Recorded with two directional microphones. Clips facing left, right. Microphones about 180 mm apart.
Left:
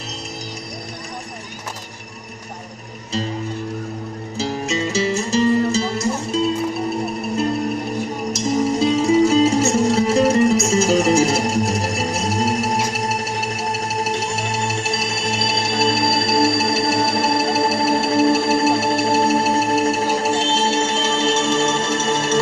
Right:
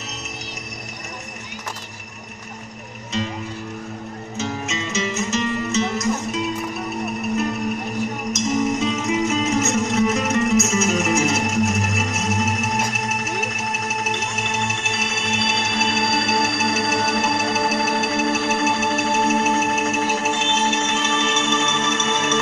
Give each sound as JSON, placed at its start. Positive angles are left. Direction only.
{"t": 4.4, "sound": "music", "side_deg": 35}
{"t": 8.3, "sound": "music", "side_deg": 30}